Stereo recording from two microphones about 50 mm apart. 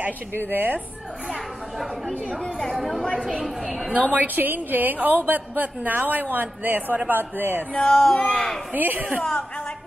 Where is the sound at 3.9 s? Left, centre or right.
Right.